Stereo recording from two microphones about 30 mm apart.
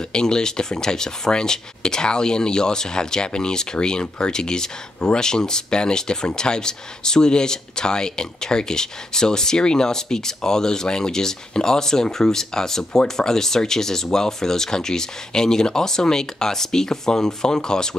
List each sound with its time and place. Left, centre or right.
0.1 s speech: left